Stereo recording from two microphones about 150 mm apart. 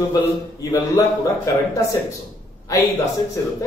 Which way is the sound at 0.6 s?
20° left (ahead or behind).